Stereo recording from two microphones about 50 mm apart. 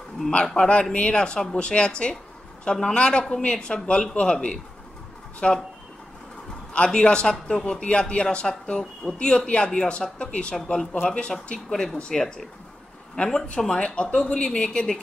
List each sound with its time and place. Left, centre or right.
0.3 s a man's voice: left
6.7 s a man's voice: centre
13.7 s speech: left